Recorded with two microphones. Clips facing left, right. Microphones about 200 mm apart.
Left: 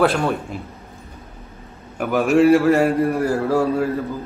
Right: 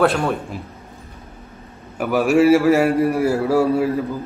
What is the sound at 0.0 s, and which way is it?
Speech, centre (ahead or behind).